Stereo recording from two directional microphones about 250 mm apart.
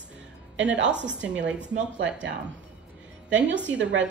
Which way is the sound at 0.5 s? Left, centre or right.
Right.